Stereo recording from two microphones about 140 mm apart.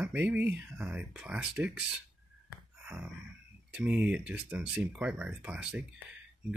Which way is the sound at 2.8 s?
10° right (ahead or behind).